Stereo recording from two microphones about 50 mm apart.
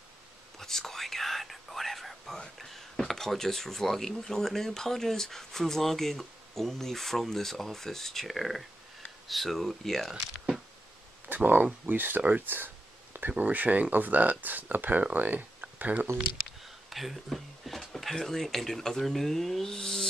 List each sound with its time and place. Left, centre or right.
0.6 s whispering: centre
2.4 s speech: centre
11.2 s speech: right
12.4 s a sound: right
13.4 s speech: right
16.9 s speech: centre